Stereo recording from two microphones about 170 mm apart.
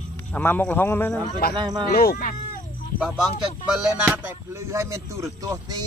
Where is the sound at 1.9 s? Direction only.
60° left (ahead or behind).